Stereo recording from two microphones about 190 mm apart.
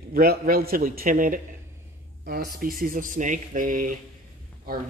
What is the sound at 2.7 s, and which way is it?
Speech, 45° right (ahead or behind).